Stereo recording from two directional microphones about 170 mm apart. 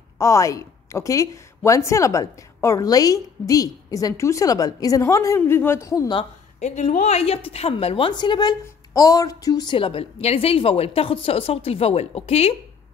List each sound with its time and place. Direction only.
0.2 s a woman's voice: 20° left (ahead or behind)
6.6 s a woman's voice: 40° left (ahead or behind)